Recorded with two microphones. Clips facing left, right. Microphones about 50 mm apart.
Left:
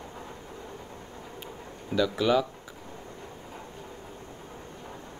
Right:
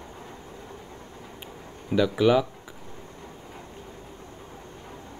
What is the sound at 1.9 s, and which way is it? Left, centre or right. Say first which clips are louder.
Speech: right 4 dB; centre.